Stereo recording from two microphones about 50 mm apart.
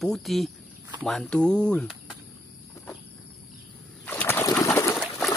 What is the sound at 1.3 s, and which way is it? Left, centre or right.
Speech, centre.